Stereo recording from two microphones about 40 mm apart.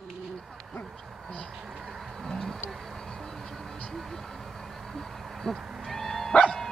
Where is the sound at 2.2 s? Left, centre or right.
Centre.